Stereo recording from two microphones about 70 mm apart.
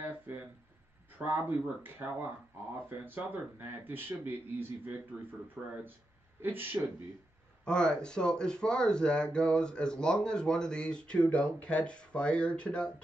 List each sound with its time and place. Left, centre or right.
1.1 s speech: right
5.6 s speech: centre
6.4 s speech: right
7.6 s speech: centre